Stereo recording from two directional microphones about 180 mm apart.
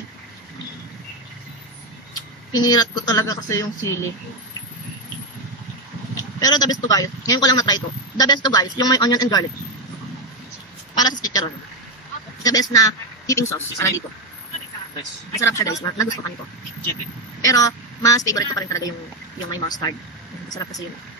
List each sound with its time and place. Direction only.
2.5 s a man's voice: 20° left (ahead or behind)
6.4 s a man's voice: 20° left (ahead or behind)
11.0 s a woman's voice: 20° left (ahead or behind)
12.4 s a man's voice: 20° left (ahead or behind)
15.4 s speech: 15° left (ahead or behind)
17.5 s a man's voice: 20° left (ahead or behind)